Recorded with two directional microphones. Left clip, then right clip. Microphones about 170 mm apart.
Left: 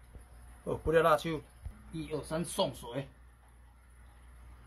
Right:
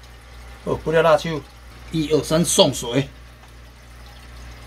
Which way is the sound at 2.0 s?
15° right (ahead or behind).